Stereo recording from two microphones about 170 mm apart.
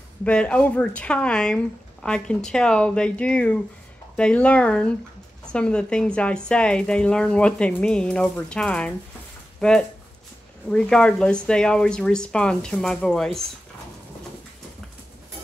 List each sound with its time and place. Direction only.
0.2 s a woman's voice: 5° left (ahead or behind)